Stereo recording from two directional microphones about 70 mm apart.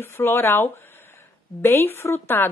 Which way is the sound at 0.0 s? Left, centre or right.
Left.